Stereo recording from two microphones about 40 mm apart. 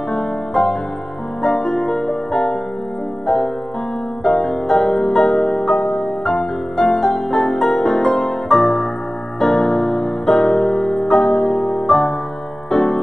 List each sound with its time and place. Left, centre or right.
0.1 s music: centre
4.2 s music: centre